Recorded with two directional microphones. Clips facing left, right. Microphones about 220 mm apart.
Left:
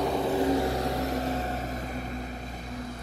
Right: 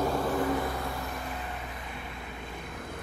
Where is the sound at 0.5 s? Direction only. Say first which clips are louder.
Left 5 dB; 40° left (ahead or behind).